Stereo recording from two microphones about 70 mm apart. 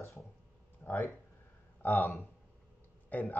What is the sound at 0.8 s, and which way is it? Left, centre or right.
A man's voice, left.